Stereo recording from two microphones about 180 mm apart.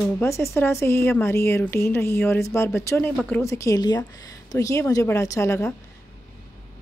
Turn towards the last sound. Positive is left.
turn(degrees=15)  # may be behind; listen again after turning